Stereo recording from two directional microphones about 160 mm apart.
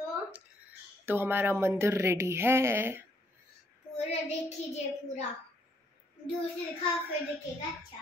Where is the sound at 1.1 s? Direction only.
15° right (ahead or behind).